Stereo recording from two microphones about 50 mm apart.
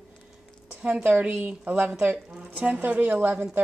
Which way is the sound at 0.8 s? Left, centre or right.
Right.